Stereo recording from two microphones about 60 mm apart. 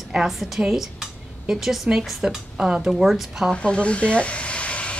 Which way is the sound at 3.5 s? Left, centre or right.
Centre.